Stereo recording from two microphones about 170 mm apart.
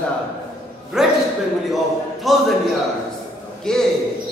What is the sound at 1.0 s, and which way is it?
Speech, 5° right (ahead or behind).